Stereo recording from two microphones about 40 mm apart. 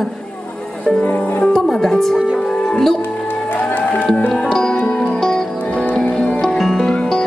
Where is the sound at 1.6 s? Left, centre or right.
Centre.